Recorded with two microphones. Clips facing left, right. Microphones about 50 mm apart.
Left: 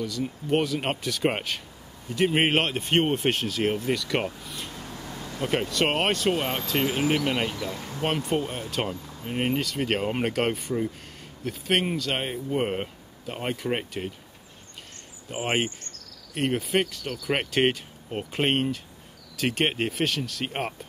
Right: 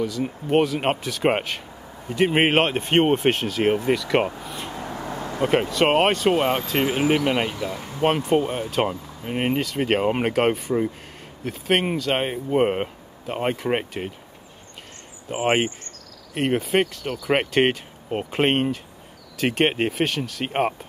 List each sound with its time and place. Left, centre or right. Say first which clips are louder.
0.5 s speech: right 5 dB; centre
4.4 s a sound: right 5 dB; centre
4.7 s vehicle: right 8 dB; right
5.7 s speech: right 5 dB; centre; by 8.1 s right
8.1 s speech: right 6 dB; centre
8.4 s speech: right 6 dB; centre
15.2 s speech: right 6 dB; centre
17.0 s speech: right 5 dB; centre